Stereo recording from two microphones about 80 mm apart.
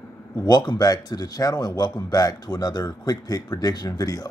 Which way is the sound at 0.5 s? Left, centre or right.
Left.